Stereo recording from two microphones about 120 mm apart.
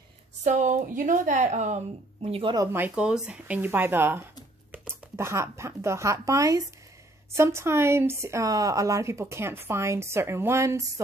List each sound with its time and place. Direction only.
0.4 s a woman's voice: 90° right; by 2.5 s 55° right (ahead or behind)
2.7 s speech: 10° right (ahead or behind)